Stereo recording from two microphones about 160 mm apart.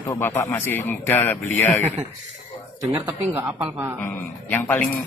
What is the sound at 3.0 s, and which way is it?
Speech, 20° right (ahead or behind).